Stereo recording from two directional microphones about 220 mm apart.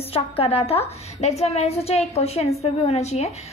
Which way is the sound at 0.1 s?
25° left (ahead or behind).